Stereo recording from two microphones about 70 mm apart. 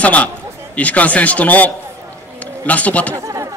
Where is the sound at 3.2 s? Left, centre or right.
Right.